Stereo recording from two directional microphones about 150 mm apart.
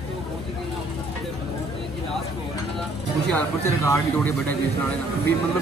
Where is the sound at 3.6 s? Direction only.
20° left (ahead or behind).